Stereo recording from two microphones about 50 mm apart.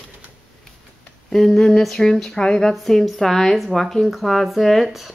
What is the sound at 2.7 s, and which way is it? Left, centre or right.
Speech, centre.